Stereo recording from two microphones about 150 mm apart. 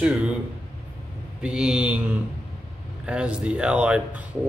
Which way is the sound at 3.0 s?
5° right (ahead or behind).